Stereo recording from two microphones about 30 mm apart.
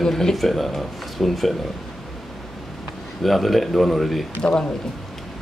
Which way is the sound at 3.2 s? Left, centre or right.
Centre.